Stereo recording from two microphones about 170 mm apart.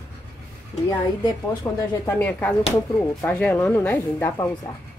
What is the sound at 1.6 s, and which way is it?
A woman's voice, 20° left (ahead or behind).